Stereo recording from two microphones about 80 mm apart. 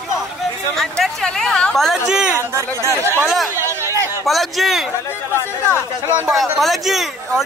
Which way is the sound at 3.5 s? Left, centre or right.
Right.